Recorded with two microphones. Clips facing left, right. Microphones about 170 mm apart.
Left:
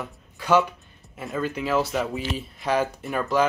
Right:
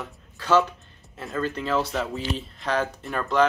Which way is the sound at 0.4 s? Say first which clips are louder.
Left 1 dB; 10° left (ahead or behind).